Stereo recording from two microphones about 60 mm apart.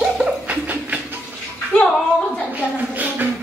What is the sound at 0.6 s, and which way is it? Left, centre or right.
Music, right.